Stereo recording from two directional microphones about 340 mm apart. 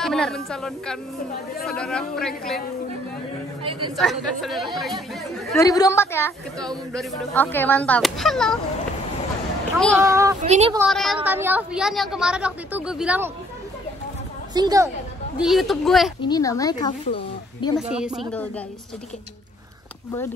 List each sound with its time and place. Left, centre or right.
0.0 s a woman's voice: centre
3.9 s a woman's voice: centre
9.8 s a woman's voice: centre
10.0 s a woman's voice: centre
10.9 s a woman's voice: centre
14.5 s a woman's voice: centre
16.2 s speech: centre
17.7 s a woman's voice: centre